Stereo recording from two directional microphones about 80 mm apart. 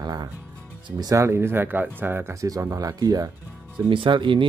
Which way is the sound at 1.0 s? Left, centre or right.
Right.